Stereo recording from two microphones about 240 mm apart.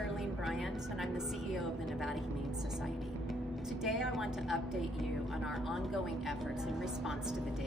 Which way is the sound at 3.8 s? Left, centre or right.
Centre.